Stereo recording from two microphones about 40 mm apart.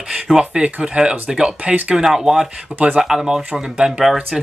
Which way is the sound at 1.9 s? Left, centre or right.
Centre.